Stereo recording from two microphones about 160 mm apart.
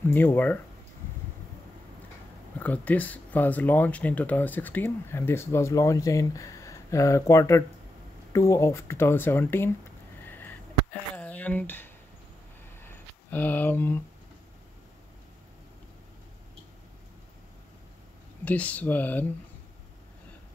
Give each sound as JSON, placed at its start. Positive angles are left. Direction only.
{"t": 0.0, "sound": "speech", "side_deg": 15}
{"t": 2.6, "sound": "speech", "side_deg": 10}
{"t": 10.2, "sound": "a sound", "side_deg": 10}
{"t": 18.4, "sound": "speech", "side_deg": 10}